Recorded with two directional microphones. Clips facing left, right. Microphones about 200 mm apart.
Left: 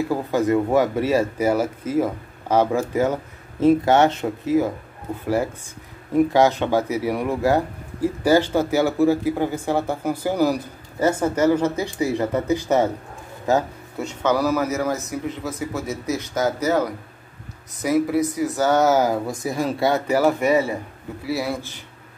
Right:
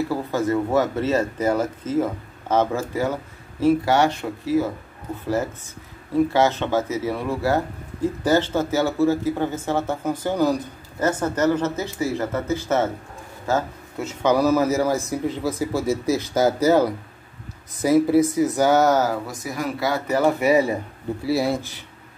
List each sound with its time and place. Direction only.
0.1 s speech: 15° left (ahead or behind)
6.1 s speech: 15° left (ahead or behind)
14.2 s a man's voice: 20° right (ahead or behind)
17.8 s speech: 30° right (ahead or behind)
18.8 s speech: 5° left (ahead or behind)
19.4 s speech: 25° left (ahead or behind)
20.1 s speech: 5° left (ahead or behind)
20.3 s a man's voice: 10° right (ahead or behind)
21.3 s speech: 30° right (ahead or behind)